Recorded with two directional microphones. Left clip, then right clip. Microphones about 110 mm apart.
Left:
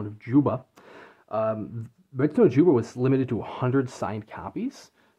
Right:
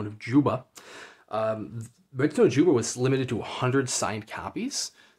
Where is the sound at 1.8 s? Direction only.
50° left (ahead or behind).